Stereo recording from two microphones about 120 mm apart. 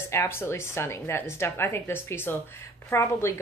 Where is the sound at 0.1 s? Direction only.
20° left (ahead or behind).